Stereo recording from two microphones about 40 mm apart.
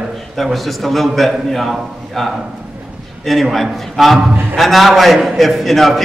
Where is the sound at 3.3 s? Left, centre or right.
Centre.